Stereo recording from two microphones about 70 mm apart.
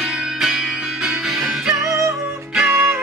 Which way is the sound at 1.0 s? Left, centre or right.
Centre.